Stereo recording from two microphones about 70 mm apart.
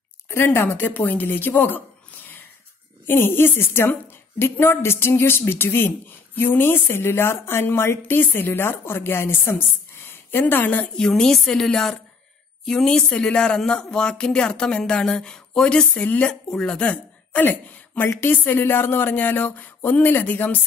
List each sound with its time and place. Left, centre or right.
0.3 s speech: left
10.4 s speech: left
11.0 s speech: centre; by 20.5 s left